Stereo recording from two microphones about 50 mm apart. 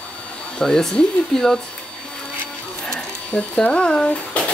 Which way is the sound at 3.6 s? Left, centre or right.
Centre.